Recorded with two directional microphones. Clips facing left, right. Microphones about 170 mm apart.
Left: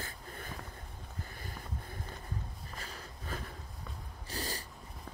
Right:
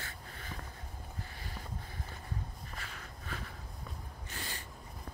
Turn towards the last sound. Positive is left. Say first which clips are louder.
# left 5 dB
turn(degrees=35)  # may be behind; listen again after turning